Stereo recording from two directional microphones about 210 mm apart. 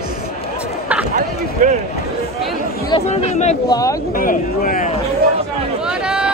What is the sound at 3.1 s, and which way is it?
Speech, 30° left (ahead or behind).